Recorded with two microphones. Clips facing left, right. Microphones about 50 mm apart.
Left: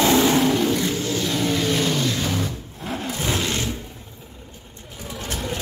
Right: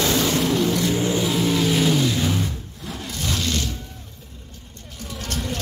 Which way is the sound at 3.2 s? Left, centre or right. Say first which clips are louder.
Even; left.